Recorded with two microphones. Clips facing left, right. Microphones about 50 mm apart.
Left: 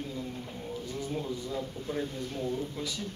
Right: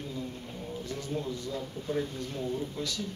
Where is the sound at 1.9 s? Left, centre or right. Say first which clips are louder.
Right 3 dB; centre.